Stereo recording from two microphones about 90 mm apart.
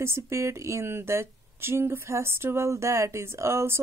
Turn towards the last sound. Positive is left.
turn(degrees=-30)  # may be behind; listen again after turning